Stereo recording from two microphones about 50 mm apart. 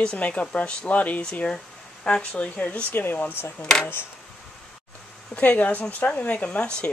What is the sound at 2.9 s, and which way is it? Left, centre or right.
Speech, left.